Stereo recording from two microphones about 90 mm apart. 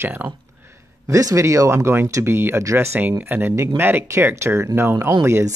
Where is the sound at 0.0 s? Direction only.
20° right (ahead or behind).